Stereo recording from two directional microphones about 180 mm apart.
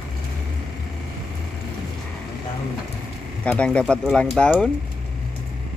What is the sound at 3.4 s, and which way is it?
Speech, 5° left (ahead or behind).